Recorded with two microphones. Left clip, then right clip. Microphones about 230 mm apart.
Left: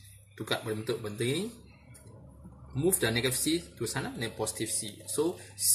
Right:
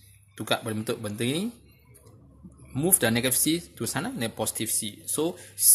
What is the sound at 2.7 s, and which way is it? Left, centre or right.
Speech, right.